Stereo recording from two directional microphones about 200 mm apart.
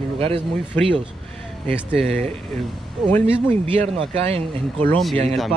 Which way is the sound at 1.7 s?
30° right (ahead or behind).